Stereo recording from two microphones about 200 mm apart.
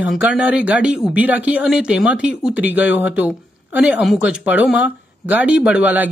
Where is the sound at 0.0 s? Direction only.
5° right (ahead or behind).